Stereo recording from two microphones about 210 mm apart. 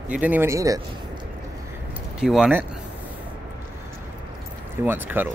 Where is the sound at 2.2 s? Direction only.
Centre (ahead or behind).